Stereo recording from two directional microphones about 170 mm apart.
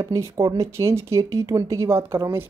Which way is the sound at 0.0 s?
20° right (ahead or behind).